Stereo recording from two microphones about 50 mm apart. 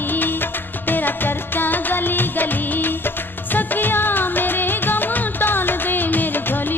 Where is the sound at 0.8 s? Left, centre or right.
Left.